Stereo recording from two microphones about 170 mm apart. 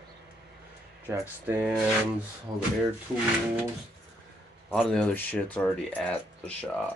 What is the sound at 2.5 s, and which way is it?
Speech, 25° right (ahead or behind).